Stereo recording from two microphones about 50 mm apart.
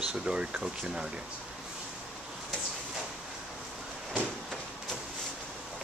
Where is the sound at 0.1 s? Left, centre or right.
Centre.